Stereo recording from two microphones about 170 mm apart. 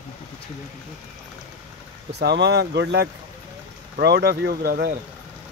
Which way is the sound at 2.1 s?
75° right (ahead or behind).